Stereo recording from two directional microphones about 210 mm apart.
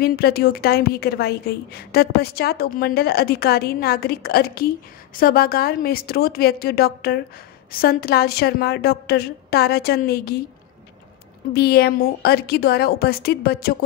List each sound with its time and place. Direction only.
0.0 s a woman's voice: 45° left (ahead or behind)
11.5 s a woman's voice: 50° left (ahead or behind)